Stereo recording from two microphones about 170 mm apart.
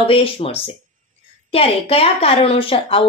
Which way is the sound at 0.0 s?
35° left (ahead or behind).